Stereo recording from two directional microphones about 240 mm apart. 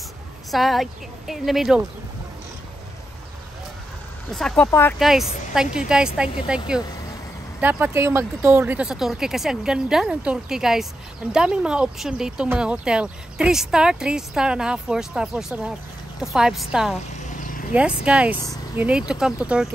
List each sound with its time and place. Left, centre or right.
0.5 s speech: centre
4.3 s speech: centre
4.9 s speech: centre
17.4 s a sound: left
17.7 s speech: centre